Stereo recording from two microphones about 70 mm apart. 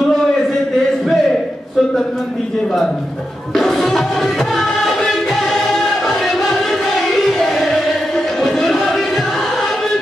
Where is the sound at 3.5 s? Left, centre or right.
Centre.